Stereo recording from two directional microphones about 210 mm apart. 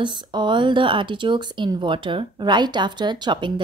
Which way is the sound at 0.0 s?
20° right (ahead or behind).